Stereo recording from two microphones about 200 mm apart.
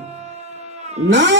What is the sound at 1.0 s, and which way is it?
Speech, 65° right (ahead or behind).